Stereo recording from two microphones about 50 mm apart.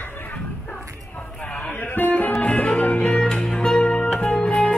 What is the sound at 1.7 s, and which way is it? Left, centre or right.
Music, left.